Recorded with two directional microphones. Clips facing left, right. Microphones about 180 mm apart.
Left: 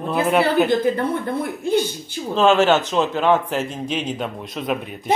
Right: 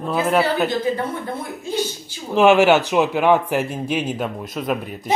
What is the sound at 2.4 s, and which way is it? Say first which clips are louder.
A man's voice: right 2 dB; 10° right (ahead or behind).